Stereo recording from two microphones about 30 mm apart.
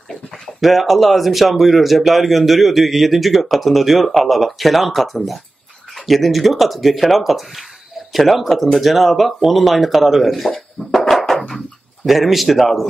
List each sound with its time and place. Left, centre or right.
0.1 s speech: centre
10.8 s music: centre
11.3 s drawer open or close: centre